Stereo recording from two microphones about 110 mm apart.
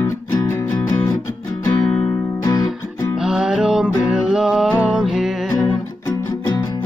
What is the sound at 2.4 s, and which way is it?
Music, 30° left (ahead or behind).